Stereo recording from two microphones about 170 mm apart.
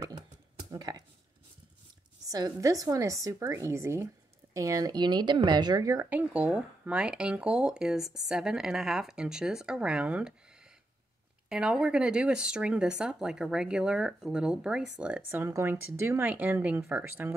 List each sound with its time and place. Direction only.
0.7 s speech: 25° right (ahead or behind)
2.2 s speech: 20° right (ahead or behind); by 10.3 s 5° right (ahead or behind)
11.4 s speech: 5° right (ahead or behind)